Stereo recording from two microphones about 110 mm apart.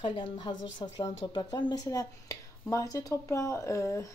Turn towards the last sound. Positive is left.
turn(degrees=30)  # may be behind; listen again after turning